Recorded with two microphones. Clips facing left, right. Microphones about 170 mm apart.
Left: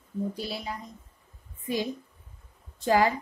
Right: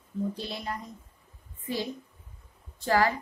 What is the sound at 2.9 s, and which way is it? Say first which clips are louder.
Speech: left 2 dB; 15° left (ahead or behind).